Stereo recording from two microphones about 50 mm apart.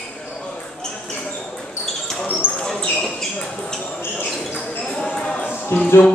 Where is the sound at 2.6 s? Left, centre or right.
Centre.